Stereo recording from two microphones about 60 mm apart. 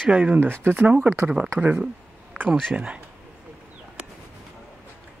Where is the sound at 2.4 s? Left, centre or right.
Right.